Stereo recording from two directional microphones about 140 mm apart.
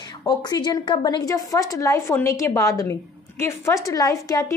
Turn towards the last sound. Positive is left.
turn(degrees=25)  # may be behind; listen again after turning